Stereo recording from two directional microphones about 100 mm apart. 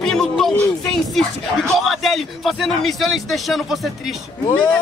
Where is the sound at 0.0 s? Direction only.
5° left (ahead or behind).